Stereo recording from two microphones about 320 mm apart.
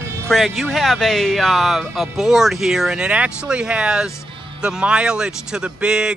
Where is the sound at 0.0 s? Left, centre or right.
Centre.